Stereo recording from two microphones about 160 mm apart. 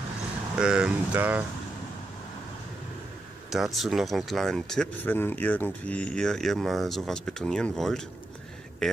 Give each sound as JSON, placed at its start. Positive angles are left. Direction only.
{"t": 0.6, "sound": "speech", "side_deg": -5}
{"t": 3.4, "sound": "speech", "side_deg": 0}